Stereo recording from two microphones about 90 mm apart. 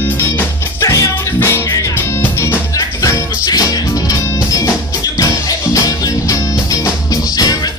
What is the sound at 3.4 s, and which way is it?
Music, 45° left (ahead or behind).